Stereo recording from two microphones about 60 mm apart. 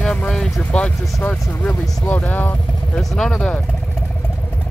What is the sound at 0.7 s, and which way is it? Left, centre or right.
Speech, centre.